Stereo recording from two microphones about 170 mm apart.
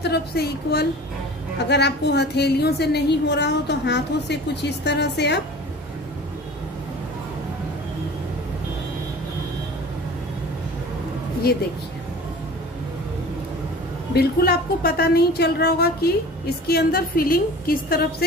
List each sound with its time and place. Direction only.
0.0 s a woman's voice: 75° left (ahead or behind)
14.1 s a woman's voice: 65° left (ahead or behind)